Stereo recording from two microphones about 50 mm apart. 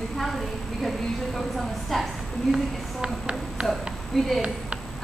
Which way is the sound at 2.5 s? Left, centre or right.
Centre.